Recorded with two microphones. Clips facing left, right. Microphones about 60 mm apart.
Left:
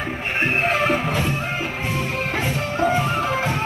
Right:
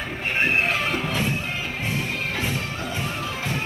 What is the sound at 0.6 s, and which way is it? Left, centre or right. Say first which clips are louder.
Music: left 4 dB; left.